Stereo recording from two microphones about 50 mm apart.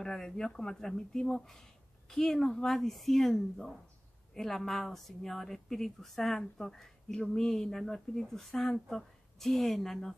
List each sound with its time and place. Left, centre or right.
0.0 s speech: centre